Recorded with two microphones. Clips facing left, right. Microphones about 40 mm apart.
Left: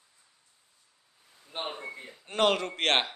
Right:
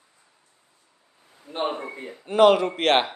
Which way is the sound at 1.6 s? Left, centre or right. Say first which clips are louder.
Right 9 dB; right.